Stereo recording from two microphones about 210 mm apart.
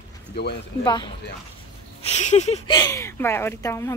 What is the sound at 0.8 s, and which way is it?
Speech, 20° left (ahead or behind).